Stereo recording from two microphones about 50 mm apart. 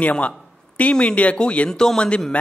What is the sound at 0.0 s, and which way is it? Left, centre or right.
A man's voice, left.